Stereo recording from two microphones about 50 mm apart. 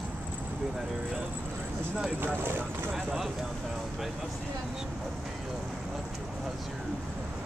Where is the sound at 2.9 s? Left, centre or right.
Centre.